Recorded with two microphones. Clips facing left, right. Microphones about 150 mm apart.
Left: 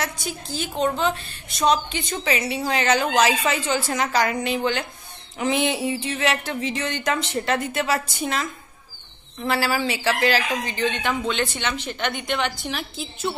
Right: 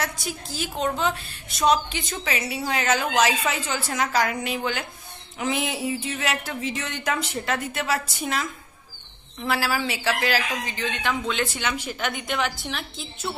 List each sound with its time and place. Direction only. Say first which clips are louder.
0.0 s a woman's voice: left 1 dB; 5° right (ahead or behind)